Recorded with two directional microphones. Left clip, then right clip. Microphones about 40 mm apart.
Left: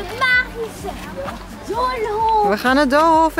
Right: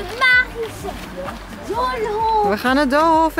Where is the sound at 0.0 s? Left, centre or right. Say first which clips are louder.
Right 2 dB; centre.